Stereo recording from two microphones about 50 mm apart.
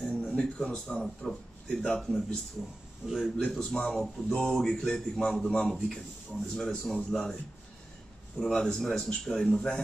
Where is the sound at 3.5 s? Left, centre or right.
Centre.